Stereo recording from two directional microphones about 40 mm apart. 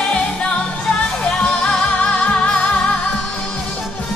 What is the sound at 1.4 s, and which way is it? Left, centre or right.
Music, left.